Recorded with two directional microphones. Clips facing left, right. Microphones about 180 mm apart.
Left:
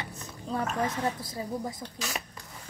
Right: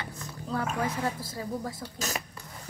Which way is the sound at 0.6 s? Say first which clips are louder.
Left 1 dB; 5° right (ahead or behind).